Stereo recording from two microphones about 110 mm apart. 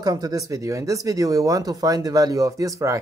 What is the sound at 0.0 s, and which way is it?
Speech, 35° right (ahead or behind).